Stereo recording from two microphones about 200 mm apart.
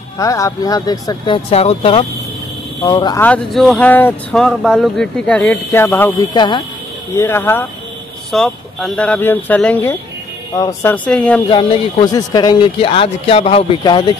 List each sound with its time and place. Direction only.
0.2 s speech: 15° left (ahead or behind)
3.2 s speech: 5° left (ahead or behind)
6.3 s speech: 20° left (ahead or behind)
7.2 s speech: 10° left (ahead or behind)
11.5 s speech: 20° left (ahead or behind)